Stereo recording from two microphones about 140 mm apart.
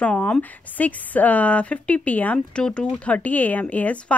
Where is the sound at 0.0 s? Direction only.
10° left (ahead or behind).